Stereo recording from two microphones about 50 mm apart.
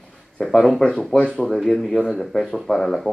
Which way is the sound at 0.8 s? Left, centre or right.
Centre.